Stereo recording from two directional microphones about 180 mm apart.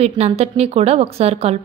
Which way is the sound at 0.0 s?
35° right (ahead or behind).